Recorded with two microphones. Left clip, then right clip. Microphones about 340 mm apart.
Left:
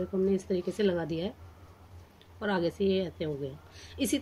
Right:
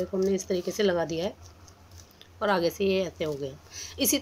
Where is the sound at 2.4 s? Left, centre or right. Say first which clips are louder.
Right 4 dB; centre.